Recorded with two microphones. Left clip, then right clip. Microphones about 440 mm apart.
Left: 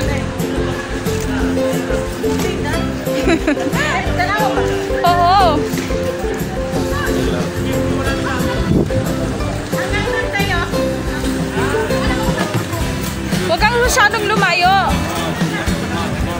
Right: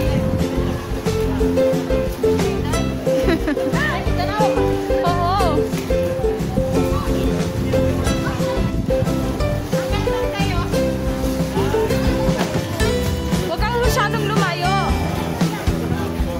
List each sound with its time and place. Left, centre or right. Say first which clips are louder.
5.0 s music: left 11 dB; right
13.5 s music: left 7 dB; right